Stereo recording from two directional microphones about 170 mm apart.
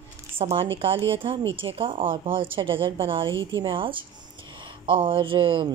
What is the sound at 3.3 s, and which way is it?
Speech, 90° right.